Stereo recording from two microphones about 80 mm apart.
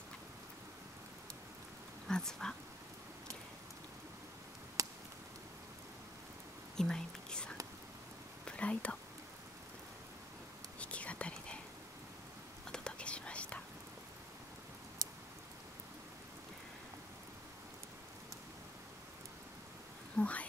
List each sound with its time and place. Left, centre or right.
2.0 s speech: centre
4.8 s a sound: right
6.8 s speech: centre
8.5 s whispering: centre
10.8 s whispering: centre
12.7 s whispering: centre
20.2 s a sound: centre